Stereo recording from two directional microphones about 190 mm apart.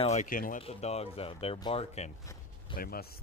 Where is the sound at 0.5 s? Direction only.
30° left (ahead or behind).